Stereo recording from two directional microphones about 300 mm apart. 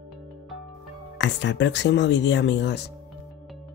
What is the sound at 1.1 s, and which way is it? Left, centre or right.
Speech, left.